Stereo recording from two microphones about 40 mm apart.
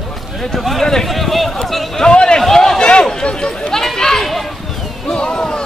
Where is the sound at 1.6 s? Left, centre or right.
Centre.